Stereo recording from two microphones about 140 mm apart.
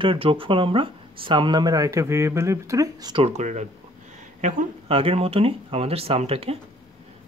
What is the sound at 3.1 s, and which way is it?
Speech, 50° right (ahead or behind).